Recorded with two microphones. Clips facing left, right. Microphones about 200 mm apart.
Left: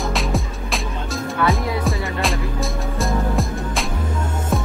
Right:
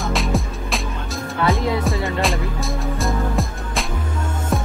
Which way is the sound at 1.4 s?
25° right (ahead or behind).